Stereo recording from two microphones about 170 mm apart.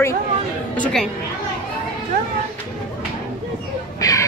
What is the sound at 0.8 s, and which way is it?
Speech, 5° left (ahead or behind).